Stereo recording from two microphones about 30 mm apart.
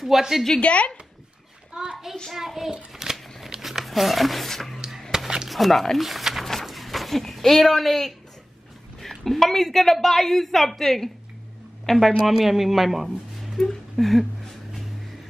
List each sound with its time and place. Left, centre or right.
0.0 s a child's voice: centre
0.6 s speech: left
1.7 s hands: right
2.3 s a child's voice: centre
3.0 s shuffling cards: centre
3.6 s a sound: centre
4.5 s a woman's voice: centre
5.1 s a sound: centre
5.5 s a woman's voice: centre
12.3 s speech: centre
13.9 s a sound: centre